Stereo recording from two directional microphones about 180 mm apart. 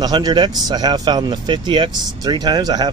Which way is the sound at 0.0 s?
20° right (ahead or behind).